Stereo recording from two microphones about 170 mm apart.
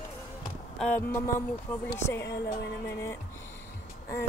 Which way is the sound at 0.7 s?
10° left (ahead or behind).